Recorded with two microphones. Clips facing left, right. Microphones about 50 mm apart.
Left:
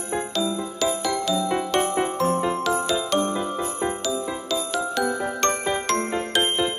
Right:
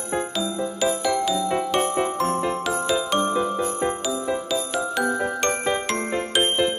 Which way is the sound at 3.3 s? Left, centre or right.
Centre.